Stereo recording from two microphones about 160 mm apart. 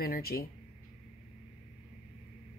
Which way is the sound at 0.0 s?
70° left (ahead or behind).